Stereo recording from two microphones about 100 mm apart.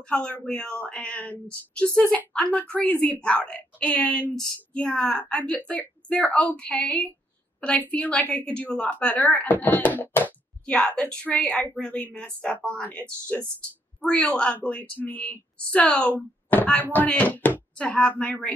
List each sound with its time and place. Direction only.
0.1 s a woman's voice: 10° left (ahead or behind)